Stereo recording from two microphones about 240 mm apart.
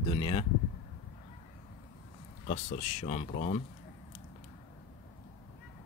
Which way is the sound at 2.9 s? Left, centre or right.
Left.